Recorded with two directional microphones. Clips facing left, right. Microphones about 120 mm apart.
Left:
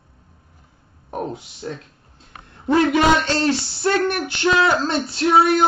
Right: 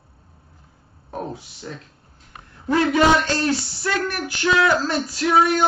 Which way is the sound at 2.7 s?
25° left (ahead or behind).